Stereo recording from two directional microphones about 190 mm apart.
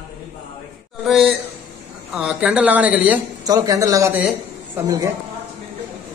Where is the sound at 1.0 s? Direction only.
Centre (ahead or behind).